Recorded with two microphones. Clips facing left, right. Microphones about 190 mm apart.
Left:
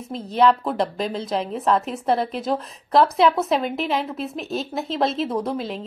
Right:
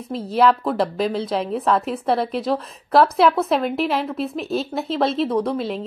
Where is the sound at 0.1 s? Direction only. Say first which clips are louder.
Right 1 dB; centre (ahead or behind).